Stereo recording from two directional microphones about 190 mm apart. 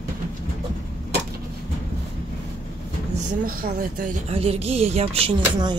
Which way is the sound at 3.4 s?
45° right (ahead or behind).